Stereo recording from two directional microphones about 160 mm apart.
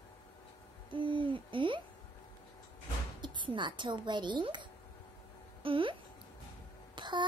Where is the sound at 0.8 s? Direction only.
30° right (ahead or behind).